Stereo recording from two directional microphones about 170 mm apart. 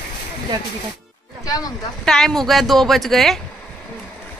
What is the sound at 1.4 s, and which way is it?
Speech, 20° left (ahead or behind).